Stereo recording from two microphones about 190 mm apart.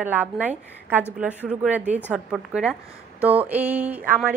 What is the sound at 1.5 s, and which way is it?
A woman's voice, 5° right (ahead or behind).